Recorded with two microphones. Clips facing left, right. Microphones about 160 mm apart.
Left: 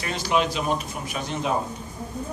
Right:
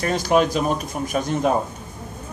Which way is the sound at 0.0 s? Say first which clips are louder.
Right 6 dB; 45° right (ahead or behind).